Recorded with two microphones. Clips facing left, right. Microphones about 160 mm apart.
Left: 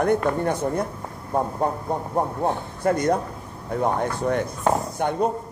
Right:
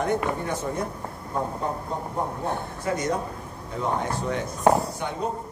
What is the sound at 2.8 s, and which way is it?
Speech, 55° left (ahead or behind).